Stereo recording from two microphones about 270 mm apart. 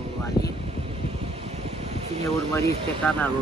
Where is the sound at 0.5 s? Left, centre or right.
Right.